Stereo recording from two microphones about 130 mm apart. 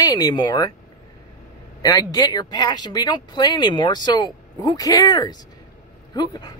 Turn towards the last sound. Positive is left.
turn(degrees=30)  # may be behind; listen again after turning